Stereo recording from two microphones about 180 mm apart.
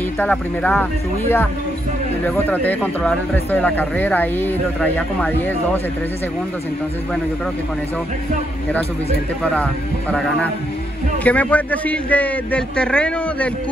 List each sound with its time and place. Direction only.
0.2 s speech: 10° left (ahead or behind)
9.4 s speech: 5° left (ahead or behind)
11.2 s speech: 10° left (ahead or behind)